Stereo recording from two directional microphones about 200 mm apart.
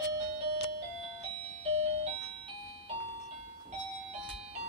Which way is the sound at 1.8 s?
30° right (ahead or behind).